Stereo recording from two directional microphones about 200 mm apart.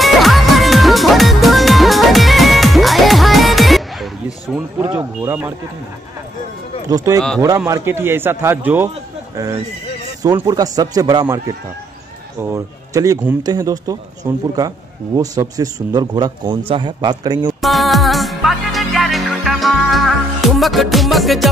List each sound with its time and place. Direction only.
0.0 s music: centre (ahead or behind)
4.9 s a man's voice: 10° right (ahead or behind)
7.3 s a man's voice: 15° right (ahead or behind)
10.2 s a man's voice: 20° right (ahead or behind)
17.6 s music: centre (ahead or behind)